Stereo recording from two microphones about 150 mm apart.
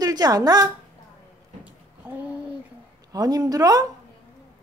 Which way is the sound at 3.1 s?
25° right (ahead or behind).